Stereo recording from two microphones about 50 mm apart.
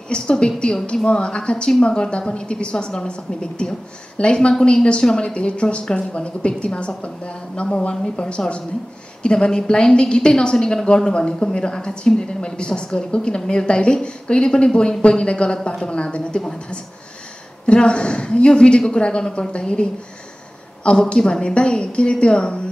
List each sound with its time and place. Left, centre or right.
0.1 s a woman's voice: centre